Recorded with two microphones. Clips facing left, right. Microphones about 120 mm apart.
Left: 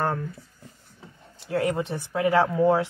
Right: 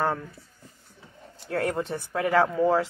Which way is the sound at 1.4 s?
Centre (ahead or behind).